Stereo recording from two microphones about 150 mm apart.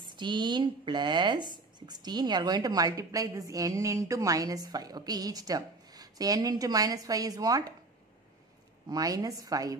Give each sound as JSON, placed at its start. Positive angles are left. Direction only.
{"t": 0.0, "sound": "speech", "side_deg": -30}
{"t": 8.8, "sound": "speech", "side_deg": -25}